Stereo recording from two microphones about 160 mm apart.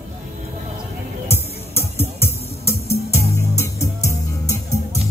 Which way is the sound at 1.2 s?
15° left (ahead or behind).